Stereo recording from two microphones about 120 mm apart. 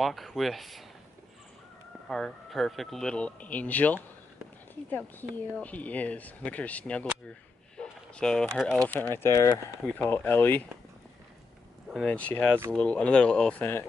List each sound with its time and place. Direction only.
0.0 s speech: centre (ahead or behind)
2.0 s speech: 5° left (ahead or behind); by 9.6 s 30° left (ahead or behind)
9.9 s speech: 15° left (ahead or behind)
11.9 s speech: 5° left (ahead or behind)